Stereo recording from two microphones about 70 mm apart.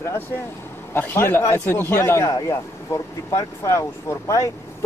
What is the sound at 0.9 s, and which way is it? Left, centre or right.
A man's voice, left.